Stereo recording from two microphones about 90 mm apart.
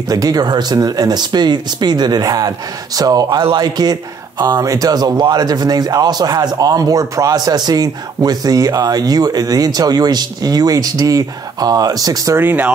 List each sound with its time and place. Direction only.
0.1 s speech: 45° right (ahead or behind)
12.4 s speech: 20° right (ahead or behind)